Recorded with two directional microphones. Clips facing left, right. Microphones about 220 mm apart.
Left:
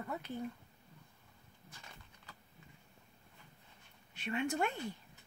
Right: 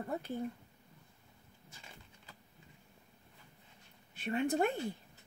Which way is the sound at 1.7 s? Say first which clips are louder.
Even; 25° right (ahead or behind).